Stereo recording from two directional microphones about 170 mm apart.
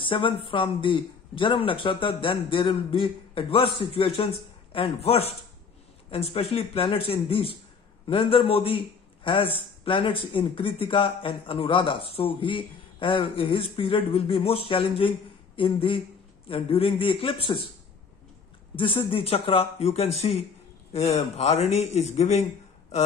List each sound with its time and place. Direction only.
0.0 s a man's voice: 30° left (ahead or behind)
18.8 s a man's voice: 30° left (ahead or behind)